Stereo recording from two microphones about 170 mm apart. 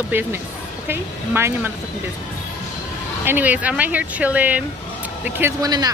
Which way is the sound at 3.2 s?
10° right (ahead or behind).